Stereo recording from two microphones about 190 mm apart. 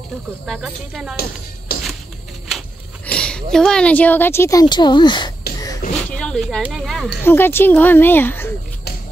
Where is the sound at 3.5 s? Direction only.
5° left (ahead or behind); by 5.3 s 25° left (ahead or behind).